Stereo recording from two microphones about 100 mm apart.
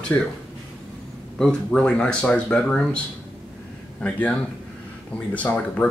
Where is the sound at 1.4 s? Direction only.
5° left (ahead or behind).